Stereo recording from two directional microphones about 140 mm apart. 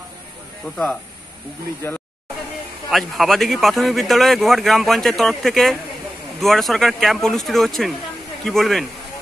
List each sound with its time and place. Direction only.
1.8 s speech: 15° left (ahead or behind)
2.9 s speech: centre (ahead or behind)